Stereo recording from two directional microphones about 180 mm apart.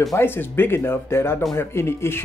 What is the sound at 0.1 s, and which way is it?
Speech, 10° left (ahead or behind).